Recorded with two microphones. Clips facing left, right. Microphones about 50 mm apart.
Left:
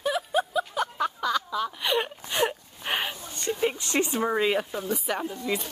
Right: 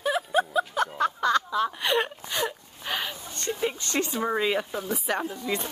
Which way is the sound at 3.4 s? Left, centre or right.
Centre.